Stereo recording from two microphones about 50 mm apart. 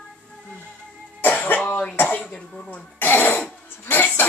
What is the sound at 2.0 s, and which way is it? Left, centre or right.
Throat clearing, left.